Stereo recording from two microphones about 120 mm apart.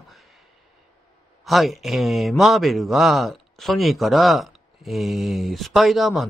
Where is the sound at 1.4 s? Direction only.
Centre (ahead or behind).